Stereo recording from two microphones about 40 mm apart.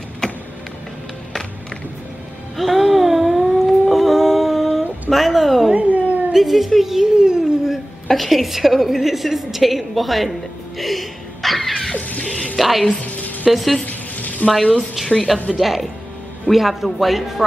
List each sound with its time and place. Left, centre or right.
2.5 s a sound: centre
5.8 s cat: right
6.3 s a sound: centre
8.1 s a woman's voice: centre
10.8 s a sound: centre
12.0 s water: left
12.5 s a woman's voice: centre
13.0 s music: left
13.5 s a woman's voice: centre
13.8 s a sound: left
14.6 s speech: centre
15.3 s a woman's voice: centre